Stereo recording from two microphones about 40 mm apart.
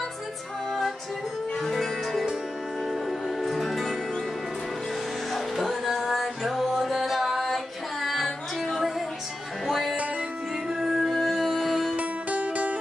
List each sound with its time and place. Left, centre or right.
1.6 s music: centre
5.3 s music: centre
12.0 s music: right